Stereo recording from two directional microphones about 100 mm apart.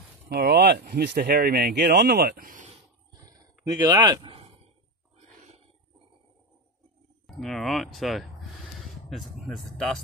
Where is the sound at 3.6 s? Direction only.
45° right (ahead or behind).